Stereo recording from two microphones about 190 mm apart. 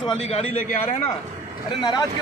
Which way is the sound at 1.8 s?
20° left (ahead or behind).